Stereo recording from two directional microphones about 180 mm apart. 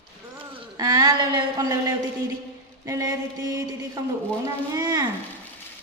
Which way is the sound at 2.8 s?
15° right (ahead or behind).